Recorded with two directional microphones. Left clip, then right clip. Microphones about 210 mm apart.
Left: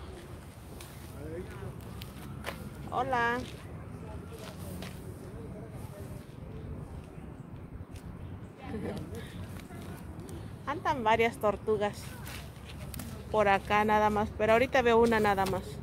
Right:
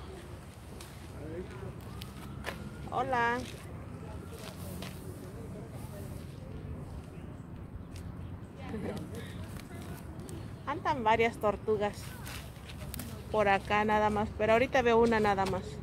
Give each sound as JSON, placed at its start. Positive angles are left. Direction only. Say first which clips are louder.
{"t": 2.4, "sound": "a sound", "louder": "even", "side_deg": 10}
{"t": 10.6, "sound": "a woman's voice", "louder": "left 1 dB", "side_deg": 10}
{"t": 13.3, "sound": "speech", "louder": "left 2 dB", "side_deg": 15}